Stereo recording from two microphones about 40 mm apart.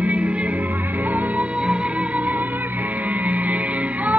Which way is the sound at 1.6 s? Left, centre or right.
Right.